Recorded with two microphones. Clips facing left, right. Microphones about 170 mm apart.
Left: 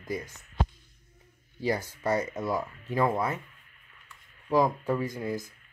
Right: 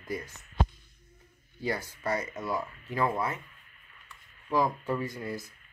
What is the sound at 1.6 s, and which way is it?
Speech, 20° left (ahead or behind).